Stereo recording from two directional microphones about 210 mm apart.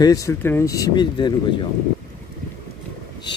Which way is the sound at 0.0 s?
15° left (ahead or behind).